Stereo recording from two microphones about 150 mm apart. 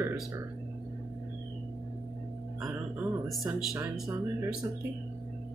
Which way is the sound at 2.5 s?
Centre (ahead or behind).